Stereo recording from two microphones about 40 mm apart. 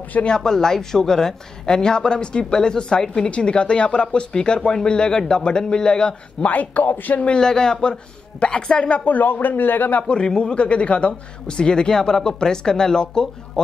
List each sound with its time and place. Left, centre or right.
0.4 s a woman's voice: centre
6.4 s speech: left
7.3 s a woman's voice: centre
9.0 s speech: left
10.0 s a woman's voice: left